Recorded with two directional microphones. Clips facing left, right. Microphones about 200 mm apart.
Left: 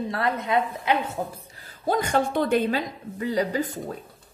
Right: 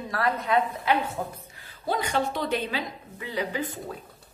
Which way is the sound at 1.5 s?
40° left (ahead or behind).